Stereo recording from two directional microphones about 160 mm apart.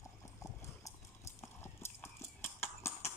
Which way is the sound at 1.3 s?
15° left (ahead or behind).